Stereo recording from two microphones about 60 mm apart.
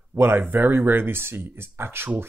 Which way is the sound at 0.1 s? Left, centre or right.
Right.